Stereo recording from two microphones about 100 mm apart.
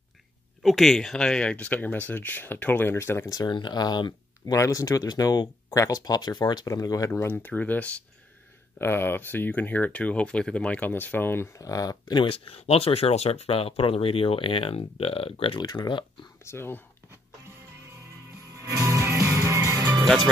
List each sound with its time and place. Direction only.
0.6 s speech: centre (ahead or behind); by 3.3 s 25° left (ahead or behind)
3.3 s speech: 50° left (ahead or behind)
4.6 s speech: 35° left (ahead or behind)
7.1 s speech: 20° left (ahead or behind)
11.5 s speech: 35° left (ahead or behind)
12.3 s speech: 75° left (ahead or behind)
15.6 s speech: 45° left (ahead or behind)
16.4 s speech: 25° left (ahead or behind)
18.6 s music: 30° right (ahead or behind)